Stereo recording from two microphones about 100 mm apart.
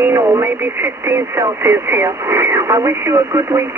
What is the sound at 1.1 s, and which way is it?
Speech, 25° right (ahead or behind).